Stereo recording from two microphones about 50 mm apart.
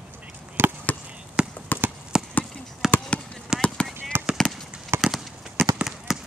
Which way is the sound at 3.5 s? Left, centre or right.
Centre.